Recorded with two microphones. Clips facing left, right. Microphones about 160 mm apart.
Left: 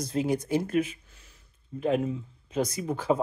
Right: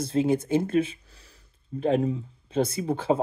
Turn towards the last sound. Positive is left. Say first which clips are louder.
# right 2 dB
turn(degrees=-30)  # may be behind; listen again after turning